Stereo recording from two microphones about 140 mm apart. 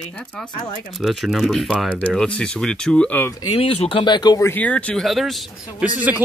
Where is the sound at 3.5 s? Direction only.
40° left (ahead or behind).